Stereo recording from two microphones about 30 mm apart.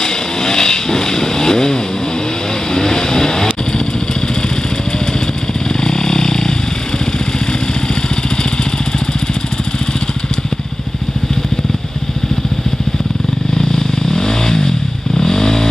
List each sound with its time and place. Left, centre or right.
0.0 s vehicle: centre
5.7 s vehicle: left
13.6 s vehicle: centre